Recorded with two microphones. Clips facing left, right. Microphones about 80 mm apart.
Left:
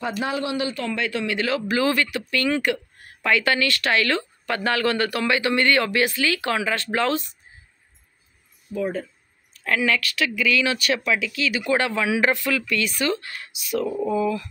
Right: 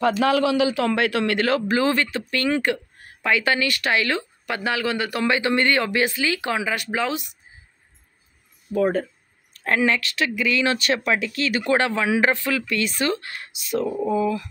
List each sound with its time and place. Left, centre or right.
0.2 s speech: right
1.7 s speech: right
5.2 s speech: right
8.7 s speech: right
9.6 s speech: right
11.8 s speech: right
13.8 s speech: centre
14.1 s speech: right